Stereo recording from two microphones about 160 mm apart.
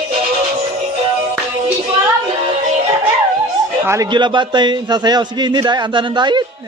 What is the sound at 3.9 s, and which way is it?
A man's voice, 25° right (ahead or behind).